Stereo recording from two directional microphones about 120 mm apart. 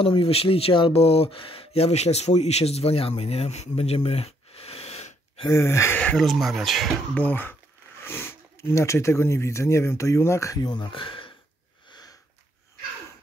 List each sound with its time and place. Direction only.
0.0 s speech: 50° left (ahead or behind)
5.5 s speech: 25° left (ahead or behind)
6.1 s speech: centre (ahead or behind)
7.2 s speech: 15° left (ahead or behind); by 11.3 s 45° left (ahead or behind)
11.9 s sniff: 35° left (ahead or behind)